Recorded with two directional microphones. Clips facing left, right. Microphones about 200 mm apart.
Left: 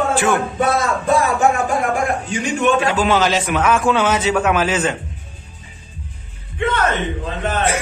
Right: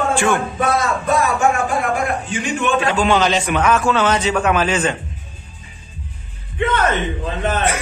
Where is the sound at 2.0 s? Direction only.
40° left (ahead or behind).